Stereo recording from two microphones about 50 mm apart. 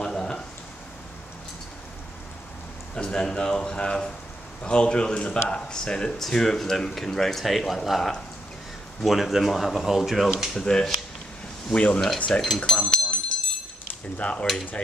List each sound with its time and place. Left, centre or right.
0.0 s a sound: centre
3.0 s a man's voice: centre
10.5 s speech: centre
11.7 s a man's voice: left
12.3 s speech: centre
12.7 s a sound: centre
14.1 s a man's voice: left